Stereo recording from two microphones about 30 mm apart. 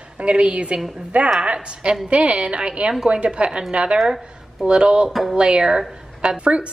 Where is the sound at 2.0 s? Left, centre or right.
Right.